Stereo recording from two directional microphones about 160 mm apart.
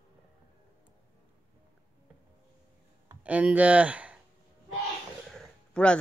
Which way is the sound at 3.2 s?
10° right (ahead or behind).